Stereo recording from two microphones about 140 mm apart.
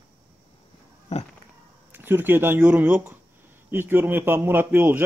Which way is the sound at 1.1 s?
50° left (ahead or behind).